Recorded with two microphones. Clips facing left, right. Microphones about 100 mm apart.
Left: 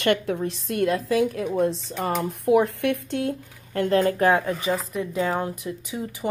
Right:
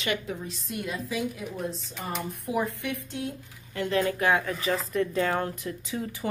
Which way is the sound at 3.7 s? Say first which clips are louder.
Left 6 dB; 45° left (ahead or behind).